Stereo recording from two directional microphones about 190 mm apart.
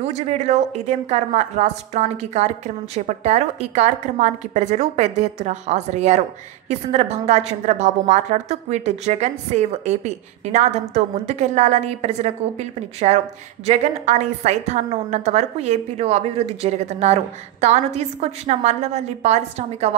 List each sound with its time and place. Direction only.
0.0 s a woman's voice: 35° right (ahead or behind)